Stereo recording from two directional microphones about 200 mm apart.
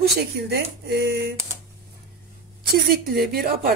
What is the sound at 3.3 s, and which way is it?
Speech, 50° right (ahead or behind).